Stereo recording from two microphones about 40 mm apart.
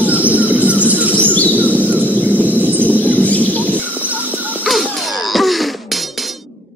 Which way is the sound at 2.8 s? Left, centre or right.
Left.